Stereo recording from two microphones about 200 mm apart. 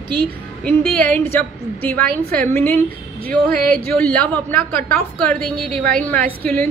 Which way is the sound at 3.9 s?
5° left (ahead or behind).